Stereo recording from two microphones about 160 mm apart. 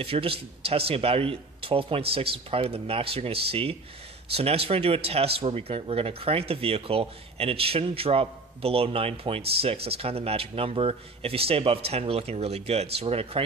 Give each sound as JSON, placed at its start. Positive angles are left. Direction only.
{"t": 0.0, "sound": "speech", "side_deg": -35}